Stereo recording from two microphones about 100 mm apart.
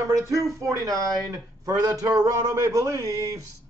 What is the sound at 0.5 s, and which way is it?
Speech, 35° right (ahead or behind).